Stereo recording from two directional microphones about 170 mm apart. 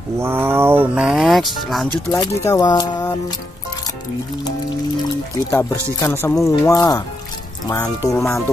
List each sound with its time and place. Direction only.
0.2 s speech: 15° right (ahead or behind)
2.1 s speech: 20° left (ahead or behind)
5.5 s speech: 15° left (ahead or behind)